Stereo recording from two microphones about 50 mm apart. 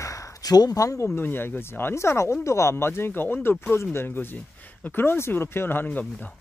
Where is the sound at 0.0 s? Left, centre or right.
Left.